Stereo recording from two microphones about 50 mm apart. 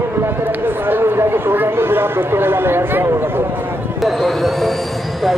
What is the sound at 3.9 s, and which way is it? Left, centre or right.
Speech, centre.